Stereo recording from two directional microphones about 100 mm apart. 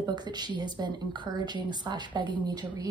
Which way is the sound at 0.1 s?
45° right (ahead or behind).